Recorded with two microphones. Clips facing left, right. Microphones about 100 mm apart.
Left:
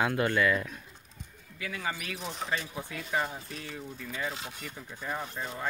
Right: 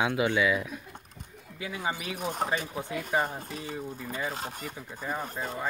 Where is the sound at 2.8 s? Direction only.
20° right (ahead or behind).